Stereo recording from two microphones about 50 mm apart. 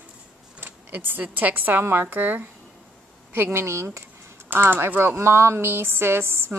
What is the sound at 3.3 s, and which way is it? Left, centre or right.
Speech, right.